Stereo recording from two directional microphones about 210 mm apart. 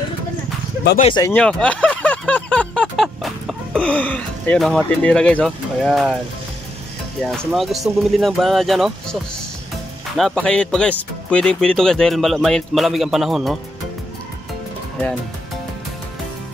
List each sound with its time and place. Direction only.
1.0 s speech: 20° left (ahead or behind)
1.3 s a sound: 5° left (ahead or behind)
7.2 s speech: centre (ahead or behind)